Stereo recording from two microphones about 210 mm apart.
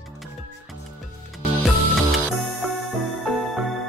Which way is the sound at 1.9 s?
Centre (ahead or behind).